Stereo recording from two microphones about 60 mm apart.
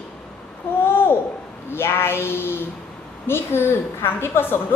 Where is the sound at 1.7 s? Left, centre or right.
Left.